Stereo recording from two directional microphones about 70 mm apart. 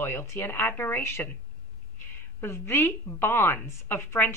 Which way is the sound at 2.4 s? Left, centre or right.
Left.